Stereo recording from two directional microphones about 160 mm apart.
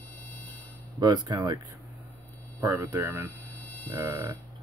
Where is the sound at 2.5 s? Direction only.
20° right (ahead or behind).